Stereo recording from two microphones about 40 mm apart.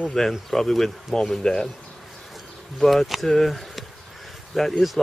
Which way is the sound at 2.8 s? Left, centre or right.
Centre.